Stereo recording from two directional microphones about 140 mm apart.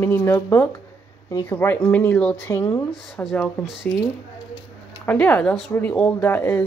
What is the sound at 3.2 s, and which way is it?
Speech, centre (ahead or behind).